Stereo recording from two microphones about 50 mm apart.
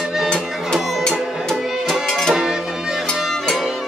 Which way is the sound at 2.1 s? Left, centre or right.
Centre.